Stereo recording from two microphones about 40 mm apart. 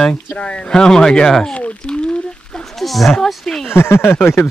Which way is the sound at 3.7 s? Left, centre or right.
Left.